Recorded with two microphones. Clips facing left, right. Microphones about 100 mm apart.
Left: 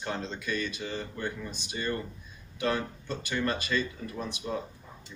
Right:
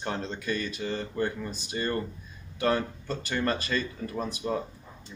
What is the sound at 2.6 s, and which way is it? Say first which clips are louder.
Speech: right 3 dB; 40° right (ahead or behind).